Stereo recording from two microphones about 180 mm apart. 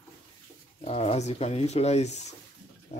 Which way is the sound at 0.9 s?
35° left (ahead or behind).